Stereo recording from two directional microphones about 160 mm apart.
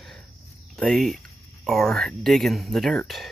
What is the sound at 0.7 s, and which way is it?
Speech, centre (ahead or behind).